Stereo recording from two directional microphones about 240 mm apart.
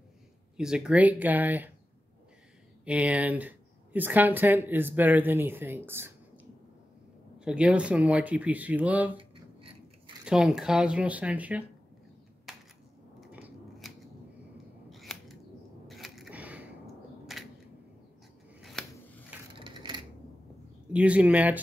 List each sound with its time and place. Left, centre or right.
0.6 s speech: centre
2.8 s speech: centre
9.1 s a sound: right
10.2 s speech: centre
12.5 s a sound: centre
14.9 s scissors: centre
15.9 s a sound: centre
18.6 s scissors: centre
19.6 s typewriter: centre
20.9 s speech: centre